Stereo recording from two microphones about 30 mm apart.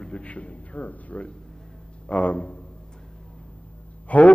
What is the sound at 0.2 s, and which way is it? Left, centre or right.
A man's voice, left.